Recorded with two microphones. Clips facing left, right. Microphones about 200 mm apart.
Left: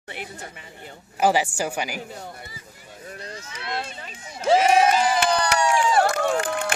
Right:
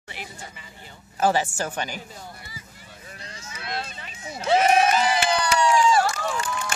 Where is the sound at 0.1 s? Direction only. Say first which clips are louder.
Left 3 dB; 55° left (ahead or behind).